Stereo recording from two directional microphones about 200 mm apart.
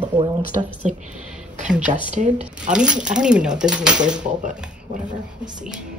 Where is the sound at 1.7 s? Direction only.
5° right (ahead or behind).